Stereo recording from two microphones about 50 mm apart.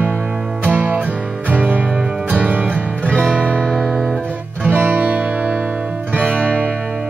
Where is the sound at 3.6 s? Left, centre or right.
Centre.